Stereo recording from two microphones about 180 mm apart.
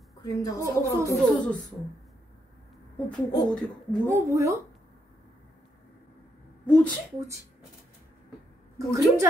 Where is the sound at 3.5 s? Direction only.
5° left (ahead or behind).